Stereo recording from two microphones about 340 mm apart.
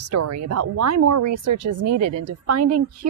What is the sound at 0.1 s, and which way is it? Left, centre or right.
Speech, right.